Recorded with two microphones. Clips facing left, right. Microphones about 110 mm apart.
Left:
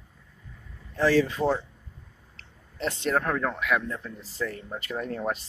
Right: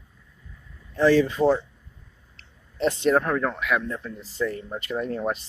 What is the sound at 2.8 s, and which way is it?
Speech, 20° right (ahead or behind).